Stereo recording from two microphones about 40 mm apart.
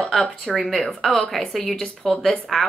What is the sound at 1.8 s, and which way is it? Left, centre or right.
Speech, centre.